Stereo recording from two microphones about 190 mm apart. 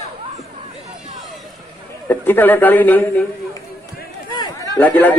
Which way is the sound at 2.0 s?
10° left (ahead or behind).